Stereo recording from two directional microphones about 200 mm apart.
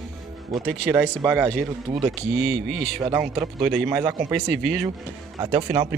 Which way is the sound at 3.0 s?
15° right (ahead or behind).